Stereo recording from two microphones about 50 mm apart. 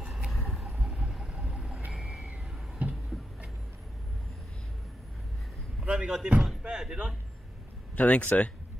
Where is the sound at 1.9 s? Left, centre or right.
Centre.